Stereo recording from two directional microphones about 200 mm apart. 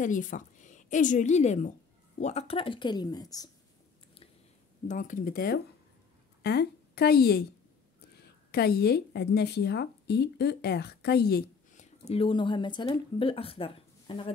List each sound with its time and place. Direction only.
0.0 s a woman's voice: 40° left (ahead or behind); by 3.4 s 20° left (ahead or behind)
4.8 s speech: 40° left (ahead or behind)
8.5 s speech: 50° left (ahead or behind); by 14.3 s 25° left (ahead or behind)